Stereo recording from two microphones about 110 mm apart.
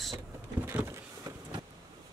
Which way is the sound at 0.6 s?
20° right (ahead or behind).